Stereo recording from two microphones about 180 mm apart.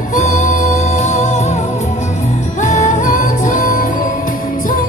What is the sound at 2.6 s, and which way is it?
Music, 45° left (ahead or behind).